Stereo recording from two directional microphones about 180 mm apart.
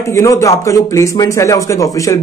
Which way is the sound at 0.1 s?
15° left (ahead or behind).